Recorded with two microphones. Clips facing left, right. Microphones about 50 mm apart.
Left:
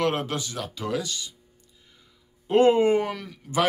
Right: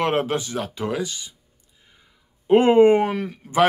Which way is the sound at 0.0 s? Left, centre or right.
Right.